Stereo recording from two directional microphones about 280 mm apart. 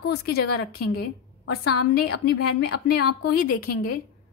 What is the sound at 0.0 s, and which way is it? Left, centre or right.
Speech, left.